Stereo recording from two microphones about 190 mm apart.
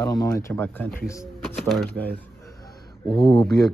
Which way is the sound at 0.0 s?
20° left (ahead or behind).